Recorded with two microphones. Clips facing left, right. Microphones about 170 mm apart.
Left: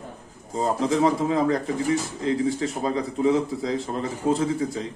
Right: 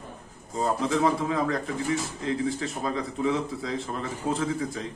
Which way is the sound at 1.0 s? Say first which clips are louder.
Left 5 dB; 30° left (ahead or behind).